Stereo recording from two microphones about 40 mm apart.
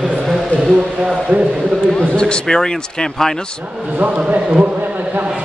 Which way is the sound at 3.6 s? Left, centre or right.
Right.